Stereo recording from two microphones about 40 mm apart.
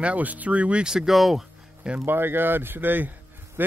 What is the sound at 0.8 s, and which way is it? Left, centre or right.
Speech, centre.